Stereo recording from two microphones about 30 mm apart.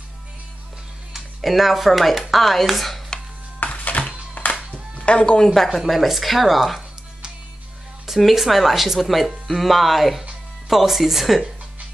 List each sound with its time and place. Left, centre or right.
1.4 s speech: centre
3.5 s music: left
4.4 s music: left
4.9 s music: left
5.8 s speech: centre
8.2 s speech: centre